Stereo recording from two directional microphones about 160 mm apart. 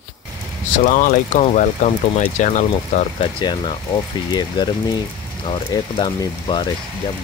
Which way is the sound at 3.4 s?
30° left (ahead or behind).